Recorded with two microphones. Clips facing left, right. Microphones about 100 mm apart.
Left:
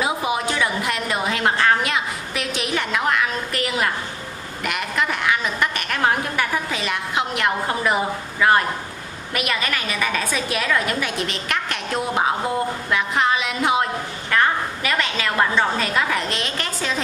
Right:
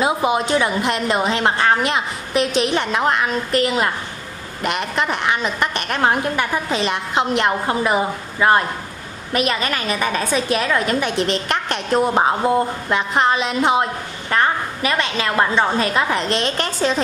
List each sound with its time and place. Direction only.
0.0 s a woman's voice: 30° right (ahead or behind)